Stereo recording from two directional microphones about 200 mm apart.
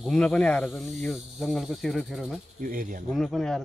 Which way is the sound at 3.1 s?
Centre (ahead or behind).